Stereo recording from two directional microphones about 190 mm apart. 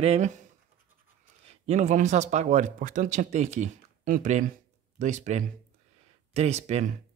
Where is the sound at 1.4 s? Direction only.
35° right (ahead or behind).